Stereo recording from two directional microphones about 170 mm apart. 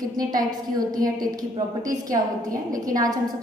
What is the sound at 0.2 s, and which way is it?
Speech, 25° right (ahead or behind).